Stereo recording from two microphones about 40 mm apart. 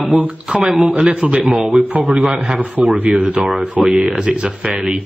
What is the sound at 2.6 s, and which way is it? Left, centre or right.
Speech, right.